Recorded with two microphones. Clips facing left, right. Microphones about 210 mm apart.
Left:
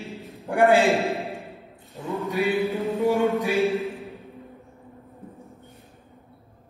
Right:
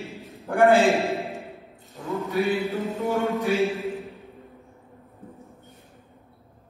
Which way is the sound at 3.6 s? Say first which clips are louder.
Left 2 dB; centre (ahead or behind).